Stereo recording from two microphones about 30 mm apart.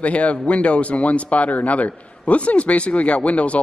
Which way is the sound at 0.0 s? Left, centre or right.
Left.